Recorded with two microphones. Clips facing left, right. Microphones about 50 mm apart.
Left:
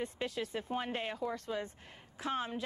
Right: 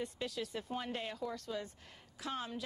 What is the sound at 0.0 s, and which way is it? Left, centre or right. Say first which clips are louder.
A woman's voice: left 3 dB; left.